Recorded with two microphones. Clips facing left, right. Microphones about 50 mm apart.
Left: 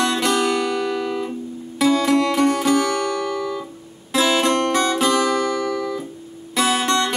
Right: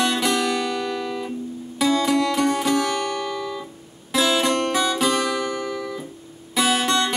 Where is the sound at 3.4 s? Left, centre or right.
Centre.